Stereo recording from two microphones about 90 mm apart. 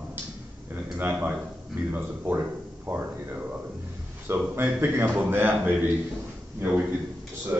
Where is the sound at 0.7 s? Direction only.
20° right (ahead or behind).